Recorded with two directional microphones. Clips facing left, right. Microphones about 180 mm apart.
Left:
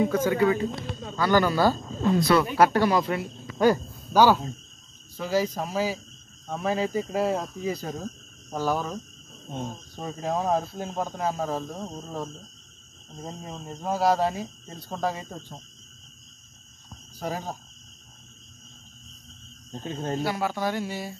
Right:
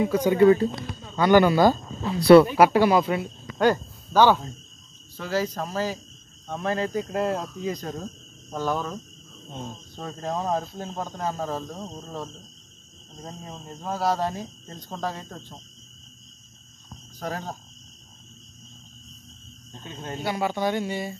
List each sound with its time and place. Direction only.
0.0 s speech: 10° right (ahead or behind)
2.1 s speech: 30° right (ahead or behind)
2.5 s speech: 10° right (ahead or behind); by 12.3 s 10° left (ahead or behind)
13.3 s speech: 10° left (ahead or behind)
17.2 s speech: 10° left (ahead or behind)
19.7 s speech: 40° left (ahead or behind)
20.2 s speech: centre (ahead or behind)